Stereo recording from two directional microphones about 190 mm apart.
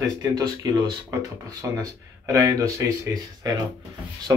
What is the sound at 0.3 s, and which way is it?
Speech, 20° right (ahead or behind).